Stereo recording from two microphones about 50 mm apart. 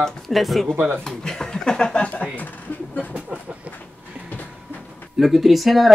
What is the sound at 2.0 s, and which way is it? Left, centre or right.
Speech, left.